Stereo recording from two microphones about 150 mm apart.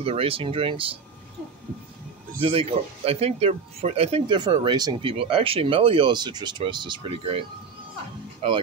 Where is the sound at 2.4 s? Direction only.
40° right (ahead or behind).